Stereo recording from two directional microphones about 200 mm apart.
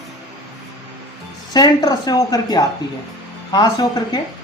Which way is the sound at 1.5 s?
20° left (ahead or behind).